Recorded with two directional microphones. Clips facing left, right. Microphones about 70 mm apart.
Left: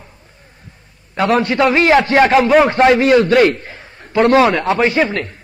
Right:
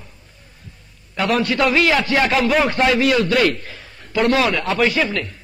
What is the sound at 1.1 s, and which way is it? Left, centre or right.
A man's voice, left.